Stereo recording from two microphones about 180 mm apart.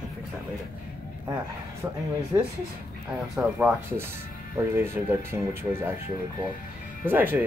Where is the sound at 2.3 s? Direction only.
20° right (ahead or behind).